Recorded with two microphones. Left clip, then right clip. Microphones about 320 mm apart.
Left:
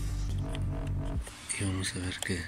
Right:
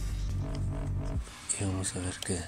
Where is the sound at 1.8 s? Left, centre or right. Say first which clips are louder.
Left 1 dB; right.